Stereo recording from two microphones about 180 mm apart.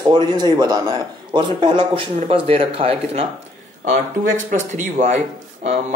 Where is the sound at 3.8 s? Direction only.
45° right (ahead or behind).